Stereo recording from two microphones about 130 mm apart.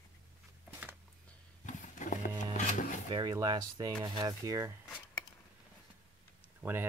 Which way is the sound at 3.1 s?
35° right (ahead or behind).